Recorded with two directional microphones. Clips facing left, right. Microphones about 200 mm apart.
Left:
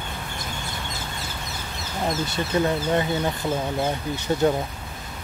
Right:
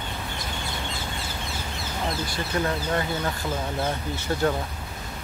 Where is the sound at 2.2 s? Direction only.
20° left (ahead or behind).